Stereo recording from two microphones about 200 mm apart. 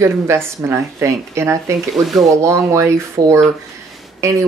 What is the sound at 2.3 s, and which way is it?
Speech, 15° right (ahead or behind).